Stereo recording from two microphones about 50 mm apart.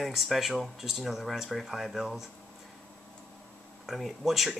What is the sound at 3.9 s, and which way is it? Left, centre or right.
Speech, centre.